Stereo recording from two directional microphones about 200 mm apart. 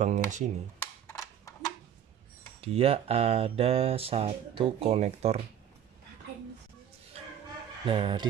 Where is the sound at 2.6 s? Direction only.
30° right (ahead or behind).